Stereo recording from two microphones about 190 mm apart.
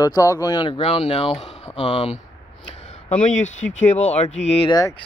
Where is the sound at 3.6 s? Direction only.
35° left (ahead or behind); by 5.0 s 20° left (ahead or behind).